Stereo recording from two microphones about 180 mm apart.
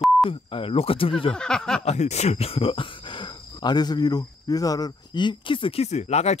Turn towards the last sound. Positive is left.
turn(degrees=35)  # may be behind; listen again after turning